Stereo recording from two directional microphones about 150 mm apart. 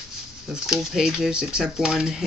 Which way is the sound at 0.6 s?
5° right (ahead or behind).